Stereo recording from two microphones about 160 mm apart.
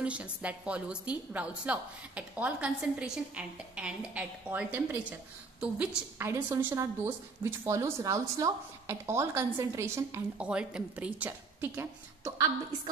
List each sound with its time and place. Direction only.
0.0 s a woman's voice: 10° right (ahead or behind)